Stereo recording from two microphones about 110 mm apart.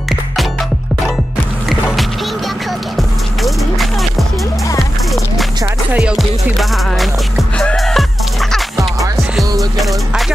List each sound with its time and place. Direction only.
3.0 s music: centre (ahead or behind)
5.9 s music: 10° right (ahead or behind)
6.1 s music: centre (ahead or behind)
8.7 s music: 30° right (ahead or behind)
9.8 s music: centre (ahead or behind)